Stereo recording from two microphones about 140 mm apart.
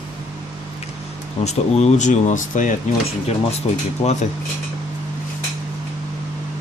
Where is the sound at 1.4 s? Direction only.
50° left (ahead or behind).